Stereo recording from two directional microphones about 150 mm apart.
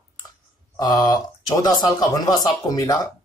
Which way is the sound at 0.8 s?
25° left (ahead or behind).